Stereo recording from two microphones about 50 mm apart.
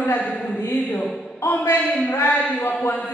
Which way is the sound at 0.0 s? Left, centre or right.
Left.